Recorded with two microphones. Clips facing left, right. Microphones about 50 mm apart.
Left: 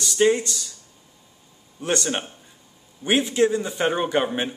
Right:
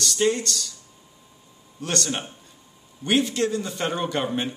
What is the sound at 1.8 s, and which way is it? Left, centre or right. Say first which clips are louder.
Speech: left 3 dB; centre.